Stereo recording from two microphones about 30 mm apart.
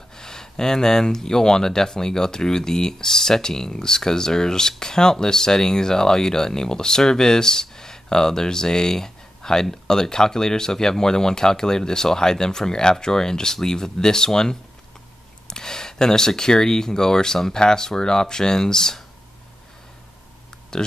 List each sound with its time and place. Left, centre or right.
0.1 s speech: centre
20.7 s speech: left